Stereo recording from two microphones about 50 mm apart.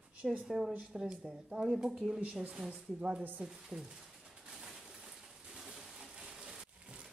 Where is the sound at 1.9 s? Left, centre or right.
Centre.